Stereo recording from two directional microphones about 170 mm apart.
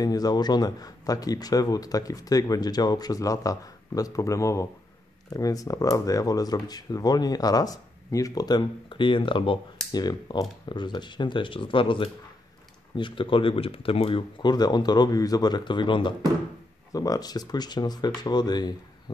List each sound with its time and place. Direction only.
0.0 s speech: 20° left (ahead or behind)